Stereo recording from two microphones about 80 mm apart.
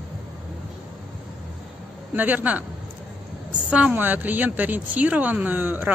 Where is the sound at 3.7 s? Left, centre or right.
Centre.